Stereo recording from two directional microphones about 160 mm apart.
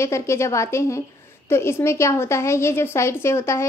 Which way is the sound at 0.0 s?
15° left (ahead or behind).